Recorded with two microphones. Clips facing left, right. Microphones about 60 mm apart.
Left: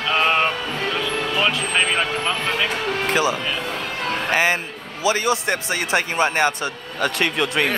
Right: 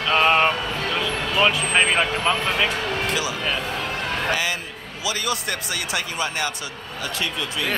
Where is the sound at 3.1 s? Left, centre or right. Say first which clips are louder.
Left 4 dB; left.